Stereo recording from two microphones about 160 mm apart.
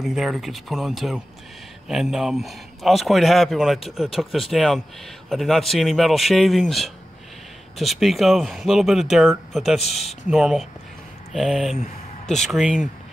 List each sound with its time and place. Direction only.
0.0 s a man's voice: centre (ahead or behind)
9.8 s a man's voice: 40° left (ahead or behind)
10.3 s a man's voice: centre (ahead or behind)